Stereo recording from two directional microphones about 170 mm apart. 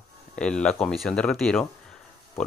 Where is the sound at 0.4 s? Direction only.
5° left (ahead or behind).